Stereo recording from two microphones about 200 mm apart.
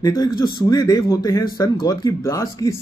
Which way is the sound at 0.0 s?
20° left (ahead or behind).